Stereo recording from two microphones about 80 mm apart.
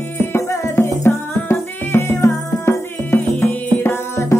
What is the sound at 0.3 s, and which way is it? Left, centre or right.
Music, left.